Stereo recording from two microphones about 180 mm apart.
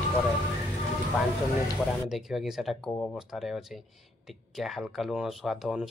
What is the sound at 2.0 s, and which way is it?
Speech, centre (ahead or behind).